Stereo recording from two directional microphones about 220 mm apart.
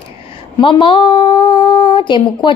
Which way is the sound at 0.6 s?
20° left (ahead or behind).